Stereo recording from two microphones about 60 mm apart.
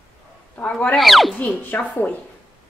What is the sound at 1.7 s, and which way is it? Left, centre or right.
Speech, left.